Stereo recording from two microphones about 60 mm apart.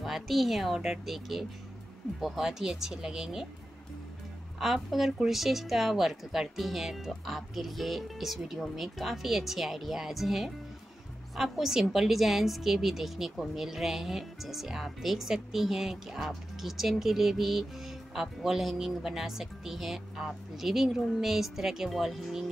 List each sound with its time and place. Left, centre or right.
0.0 s a woman's voice: centre
4.6 s a woman's voice: centre